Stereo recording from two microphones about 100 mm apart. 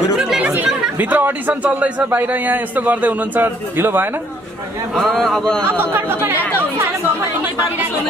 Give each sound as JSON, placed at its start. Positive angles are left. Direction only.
{"t": 0.1, "sound": "chatter", "side_deg": -5}
{"t": 0.9, "sound": "a man's voice", "side_deg": -20}
{"t": 4.9, "sound": "a man's voice", "side_deg": 5}
{"t": 5.6, "sound": "speech", "side_deg": -20}